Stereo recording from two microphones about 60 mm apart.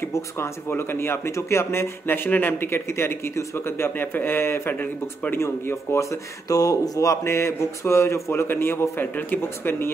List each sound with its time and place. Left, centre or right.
0.0 s speech: left
5.9 s speech: left